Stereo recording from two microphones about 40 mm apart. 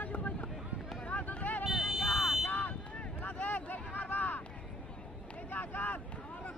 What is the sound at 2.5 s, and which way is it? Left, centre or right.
Vehicle, left.